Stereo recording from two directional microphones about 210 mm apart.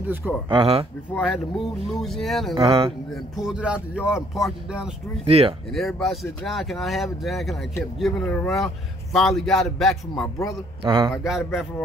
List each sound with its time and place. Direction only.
0.0 s speech: 10° right (ahead or behind)
0.5 s speech: 25° right (ahead or behind)
1.1 s a man's voice: centre (ahead or behind)
2.5 s speech: 25° right (ahead or behind)
3.3 s a man's voice: 5° right (ahead or behind)
5.2 s speech: 30° right (ahead or behind)
5.7 s a man's voice: centre (ahead or behind)
10.8 s speech: 25° right (ahead or behind)
11.2 s a man's voice: centre (ahead or behind)